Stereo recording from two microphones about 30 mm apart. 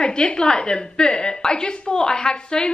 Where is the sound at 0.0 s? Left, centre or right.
Left.